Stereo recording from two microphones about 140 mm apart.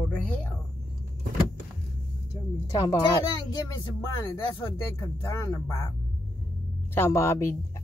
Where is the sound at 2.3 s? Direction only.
30° left (ahead or behind).